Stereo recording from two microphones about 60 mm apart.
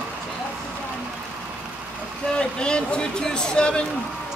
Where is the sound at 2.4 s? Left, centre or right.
Centre.